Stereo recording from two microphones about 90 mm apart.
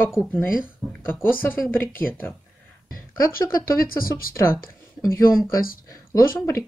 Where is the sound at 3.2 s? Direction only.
35° left (ahead or behind).